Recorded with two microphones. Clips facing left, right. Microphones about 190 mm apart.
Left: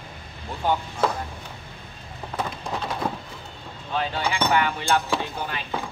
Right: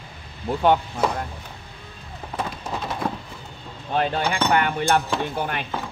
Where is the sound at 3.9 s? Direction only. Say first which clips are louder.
Right 4 dB; 55° right (ahead or behind).